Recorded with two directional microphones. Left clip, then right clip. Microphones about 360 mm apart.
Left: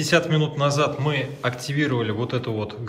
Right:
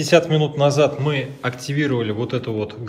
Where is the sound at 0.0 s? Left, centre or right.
Centre.